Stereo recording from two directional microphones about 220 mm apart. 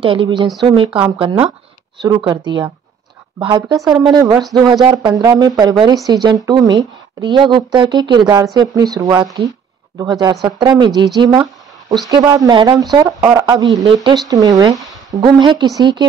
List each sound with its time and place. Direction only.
0.0 s speech: 25° right (ahead or behind)
3.6 s speech: 5° right (ahead or behind)
3.9 s speech: 20° right (ahead or behind)